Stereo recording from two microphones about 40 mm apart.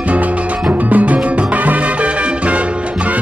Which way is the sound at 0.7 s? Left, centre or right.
Right.